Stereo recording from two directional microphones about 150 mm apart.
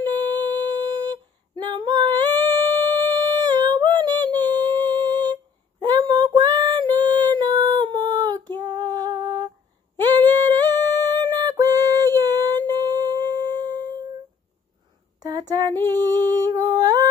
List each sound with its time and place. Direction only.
0.0 s female singing: 30° right (ahead or behind)
10.0 s singing: 30° right (ahead or behind)
15.1 s humming: 25° right (ahead or behind)